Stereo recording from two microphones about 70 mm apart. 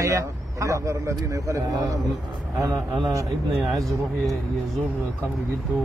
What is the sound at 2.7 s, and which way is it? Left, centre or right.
Speech, right.